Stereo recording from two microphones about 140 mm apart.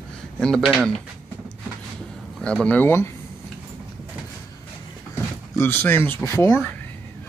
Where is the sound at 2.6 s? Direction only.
15° left (ahead or behind).